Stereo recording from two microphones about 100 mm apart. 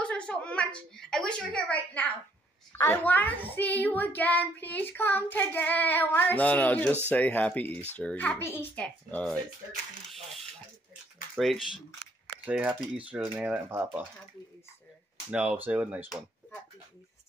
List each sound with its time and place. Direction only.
0.0 s a woman's voice: 10° left (ahead or behind)
8.4 s a child's voice: 25° left (ahead or behind)
8.7 s a child's voice: 10° left (ahead or behind)
11.3 s speech: centre (ahead or behind)
12.4 s speech: 15° right (ahead or behind)
15.3 s speech: 15° right (ahead or behind)